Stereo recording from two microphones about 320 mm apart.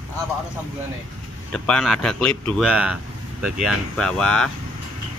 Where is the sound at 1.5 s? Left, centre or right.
Centre.